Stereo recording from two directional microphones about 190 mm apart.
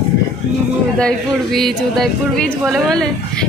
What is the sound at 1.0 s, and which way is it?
Speech, centre (ahead or behind).